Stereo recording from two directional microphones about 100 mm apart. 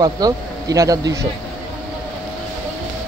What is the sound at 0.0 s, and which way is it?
Speech, 40° right (ahead or behind).